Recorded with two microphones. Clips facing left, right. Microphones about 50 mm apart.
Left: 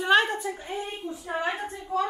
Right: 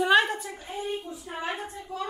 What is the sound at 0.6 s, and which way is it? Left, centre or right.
Speech, centre.